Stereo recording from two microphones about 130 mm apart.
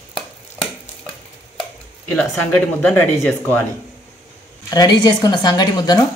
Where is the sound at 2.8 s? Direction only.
15° left (ahead or behind).